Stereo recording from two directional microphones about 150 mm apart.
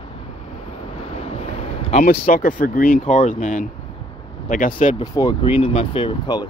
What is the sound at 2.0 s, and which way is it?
Speech, 70° left (ahead or behind).